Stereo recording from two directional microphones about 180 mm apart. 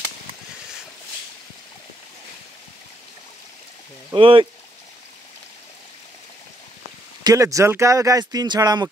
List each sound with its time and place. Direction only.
4.1 s speech: 30° right (ahead or behind)
7.2 s speech: 20° right (ahead or behind)